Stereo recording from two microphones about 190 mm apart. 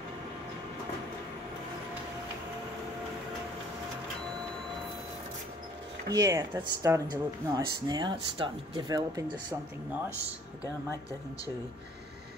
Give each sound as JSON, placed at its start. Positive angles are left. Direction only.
{"t": 6.1, "sound": "speech", "side_deg": -15}